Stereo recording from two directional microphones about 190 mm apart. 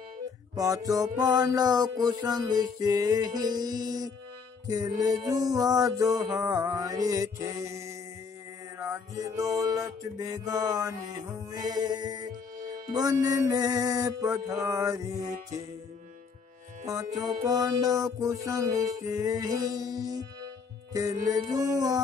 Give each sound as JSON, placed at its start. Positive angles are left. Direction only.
{"t": 0.6, "sound": "music", "side_deg": -20}
{"t": 16.8, "sound": "music", "side_deg": -20}